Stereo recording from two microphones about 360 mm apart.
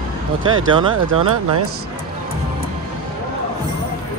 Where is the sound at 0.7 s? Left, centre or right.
Centre.